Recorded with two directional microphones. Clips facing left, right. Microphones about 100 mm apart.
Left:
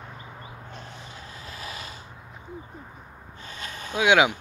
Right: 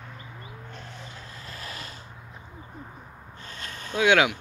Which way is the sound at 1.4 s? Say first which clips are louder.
Left 2 dB; 15° left (ahead or behind).